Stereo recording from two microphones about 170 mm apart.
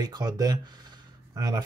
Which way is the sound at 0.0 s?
25° right (ahead or behind).